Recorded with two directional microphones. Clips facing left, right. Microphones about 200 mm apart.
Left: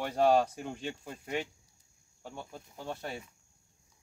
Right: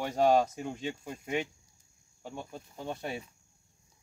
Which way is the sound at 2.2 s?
15° right (ahead or behind).